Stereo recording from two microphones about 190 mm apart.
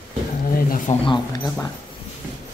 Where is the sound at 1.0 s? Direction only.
20° left (ahead or behind).